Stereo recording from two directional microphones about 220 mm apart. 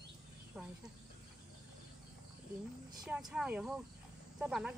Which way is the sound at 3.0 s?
5° right (ahead or behind).